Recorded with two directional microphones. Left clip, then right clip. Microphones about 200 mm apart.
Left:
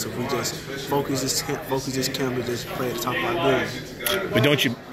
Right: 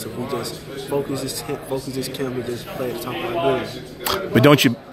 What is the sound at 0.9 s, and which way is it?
Speech, 5° right (ahead or behind).